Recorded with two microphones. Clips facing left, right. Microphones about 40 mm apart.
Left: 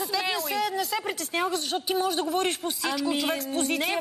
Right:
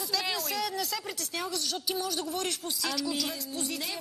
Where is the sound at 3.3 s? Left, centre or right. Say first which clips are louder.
Left 8 dB; left.